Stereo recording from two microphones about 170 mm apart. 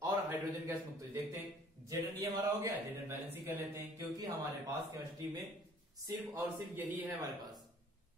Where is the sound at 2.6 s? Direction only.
15° right (ahead or behind).